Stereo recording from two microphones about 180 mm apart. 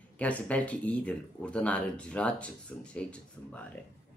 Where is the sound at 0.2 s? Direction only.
10° left (ahead or behind).